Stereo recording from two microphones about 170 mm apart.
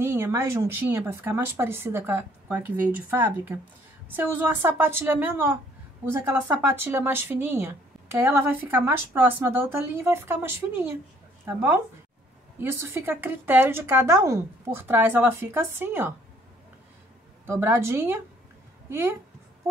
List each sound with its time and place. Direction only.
0.0 s speech: 15° right (ahead or behind)
6.6 s speech: 15° right (ahead or behind)
17.5 s a woman's voice: 15° right (ahead or behind)